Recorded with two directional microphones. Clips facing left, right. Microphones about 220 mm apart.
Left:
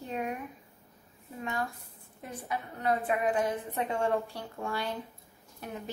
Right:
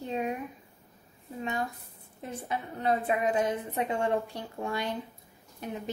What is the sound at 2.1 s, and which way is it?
A woman's voice, 25° right (ahead or behind).